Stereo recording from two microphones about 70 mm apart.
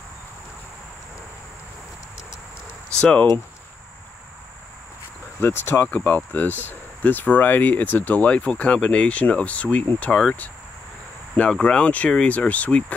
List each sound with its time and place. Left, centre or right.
2.9 s speech: centre
5.4 s speech: left
11.6 s speech: centre